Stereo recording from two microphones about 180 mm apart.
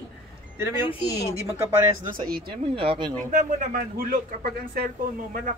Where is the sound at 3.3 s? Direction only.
45° right (ahead or behind).